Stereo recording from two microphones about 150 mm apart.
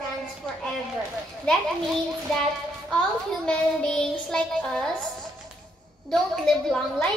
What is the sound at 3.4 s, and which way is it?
A woman's voice, 5° left (ahead or behind).